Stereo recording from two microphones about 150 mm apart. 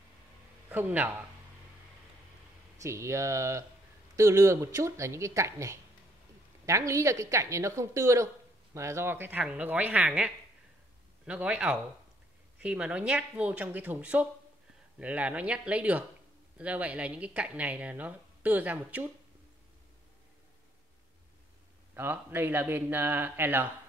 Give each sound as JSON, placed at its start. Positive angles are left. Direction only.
{"t": 0.7, "sound": "speech", "side_deg": -10}
{"t": 2.8, "sound": "a woman's voice", "side_deg": -20}
{"t": 21.9, "sound": "speech", "side_deg": -15}